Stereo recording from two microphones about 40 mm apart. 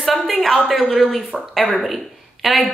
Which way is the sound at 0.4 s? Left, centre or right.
Centre.